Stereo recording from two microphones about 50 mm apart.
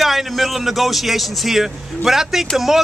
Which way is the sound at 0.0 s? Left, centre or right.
Centre.